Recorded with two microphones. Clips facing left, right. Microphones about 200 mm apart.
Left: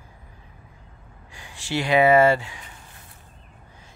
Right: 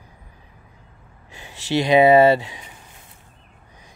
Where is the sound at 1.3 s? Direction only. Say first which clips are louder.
Right 6 dB; 20° right (ahead or behind).